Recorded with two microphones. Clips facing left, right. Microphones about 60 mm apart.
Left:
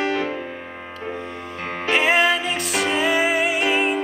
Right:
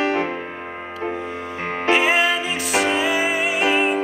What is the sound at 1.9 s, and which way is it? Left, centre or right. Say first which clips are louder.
Music: even; centre.